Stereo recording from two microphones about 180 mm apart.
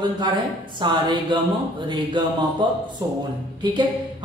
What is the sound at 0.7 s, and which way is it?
Speech, 25° right (ahead or behind).